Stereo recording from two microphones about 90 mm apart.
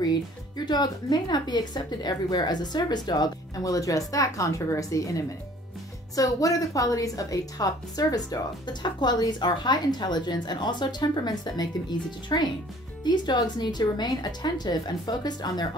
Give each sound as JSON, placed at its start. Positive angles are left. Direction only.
{"t": 0.7, "sound": "a woman's voice", "side_deg": 50}